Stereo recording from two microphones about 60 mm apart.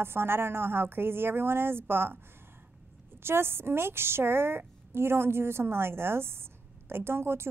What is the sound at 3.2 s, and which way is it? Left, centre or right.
A woman's voice, right.